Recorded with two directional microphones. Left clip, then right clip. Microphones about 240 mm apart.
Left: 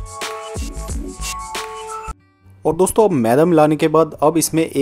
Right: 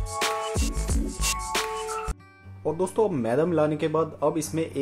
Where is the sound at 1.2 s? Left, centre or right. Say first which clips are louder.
Left 1 dB; centre.